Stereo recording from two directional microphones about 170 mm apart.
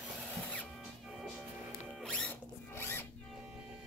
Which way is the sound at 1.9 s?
5° left (ahead or behind).